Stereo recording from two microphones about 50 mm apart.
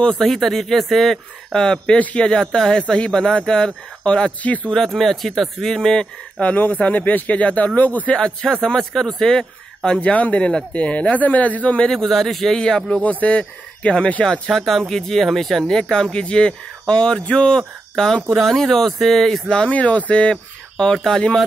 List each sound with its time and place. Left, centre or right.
0.2 s speech: centre; by 4.7 s left
4.8 s speech: centre
6.4 s speech: left
8.1 s speech: centre
8.6 s speech: centre; by 11.9 s left
11.9 s speech: centre
13.0 s speech: left
14.5 s speech: centre
15.8 s speech: centre
19.7 s speech: left
20.7 s speech: centre